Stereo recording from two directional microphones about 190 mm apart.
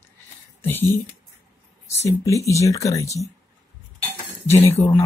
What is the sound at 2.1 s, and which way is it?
Speech, 15° left (ahead or behind).